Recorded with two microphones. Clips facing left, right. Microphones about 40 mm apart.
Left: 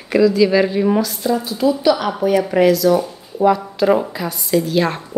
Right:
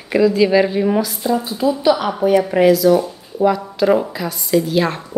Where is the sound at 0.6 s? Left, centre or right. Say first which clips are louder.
Even; centre.